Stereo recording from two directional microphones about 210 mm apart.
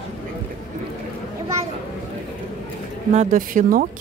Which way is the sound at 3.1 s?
35° right (ahead or behind).